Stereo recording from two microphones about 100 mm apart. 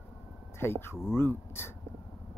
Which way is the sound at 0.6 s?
25° left (ahead or behind).